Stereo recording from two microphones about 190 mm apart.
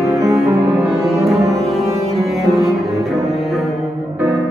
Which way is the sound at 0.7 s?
Centre (ahead or behind).